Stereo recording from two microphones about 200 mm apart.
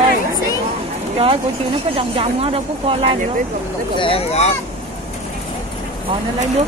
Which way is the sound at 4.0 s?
30° left (ahead or behind).